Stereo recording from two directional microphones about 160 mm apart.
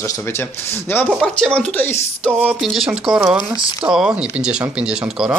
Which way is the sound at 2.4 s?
Centre (ahead or behind).